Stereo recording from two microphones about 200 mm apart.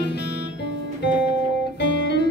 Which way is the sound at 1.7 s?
60° left (ahead or behind).